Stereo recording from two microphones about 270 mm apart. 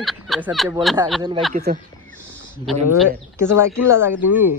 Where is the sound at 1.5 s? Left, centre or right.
Right.